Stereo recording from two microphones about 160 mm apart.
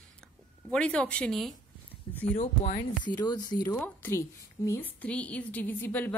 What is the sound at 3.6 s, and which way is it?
A woman's voice, 10° left (ahead or behind).